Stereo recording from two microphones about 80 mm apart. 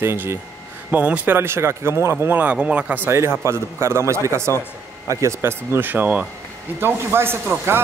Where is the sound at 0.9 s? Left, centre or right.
Centre.